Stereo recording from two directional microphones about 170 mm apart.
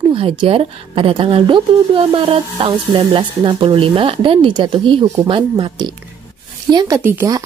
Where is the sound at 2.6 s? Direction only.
30° right (ahead or behind).